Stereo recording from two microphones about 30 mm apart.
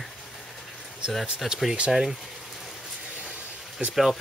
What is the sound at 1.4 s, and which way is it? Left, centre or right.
Speech, centre.